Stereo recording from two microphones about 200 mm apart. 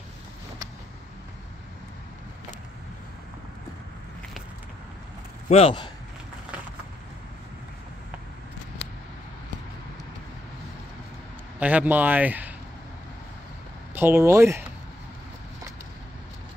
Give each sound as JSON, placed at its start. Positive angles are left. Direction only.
{"t": 5.5, "sound": "speech", "side_deg": 30}
{"t": 11.6, "sound": "speech", "side_deg": -10}
{"t": 13.9, "sound": "speech", "side_deg": -10}